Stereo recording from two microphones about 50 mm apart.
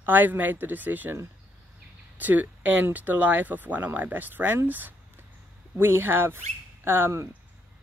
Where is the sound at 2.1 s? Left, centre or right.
Right.